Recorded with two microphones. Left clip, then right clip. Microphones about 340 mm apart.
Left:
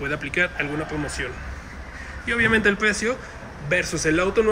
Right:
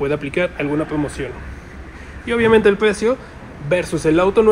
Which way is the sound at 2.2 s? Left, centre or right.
Centre.